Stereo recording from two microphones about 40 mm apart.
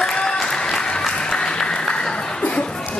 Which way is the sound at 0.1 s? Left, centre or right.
Left.